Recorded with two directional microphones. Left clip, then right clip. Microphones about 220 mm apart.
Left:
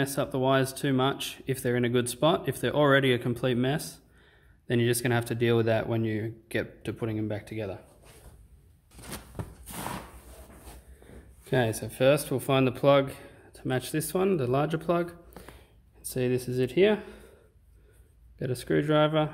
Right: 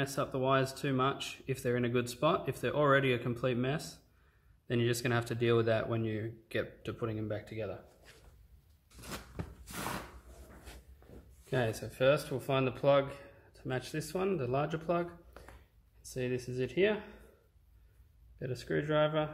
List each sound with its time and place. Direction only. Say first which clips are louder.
0.0 s speech: left 6 dB; 25° left (ahead or behind)
9.1 s a sound: left 3 dB; 20° left (ahead or behind)
11.5 s speech: left 7 dB; 35° left (ahead or behind)
18.4 s speech: left 8 dB; 40° left (ahead or behind)